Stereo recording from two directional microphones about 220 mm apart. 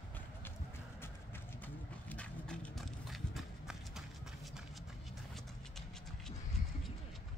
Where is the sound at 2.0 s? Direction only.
5° left (ahead or behind).